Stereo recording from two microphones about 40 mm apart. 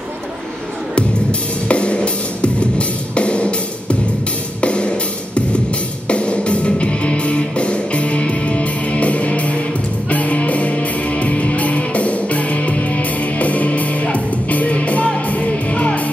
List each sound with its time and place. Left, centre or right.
1.7 s music: left